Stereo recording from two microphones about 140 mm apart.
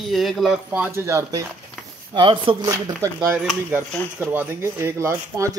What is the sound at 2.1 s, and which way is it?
Speech, 35° right (ahead or behind).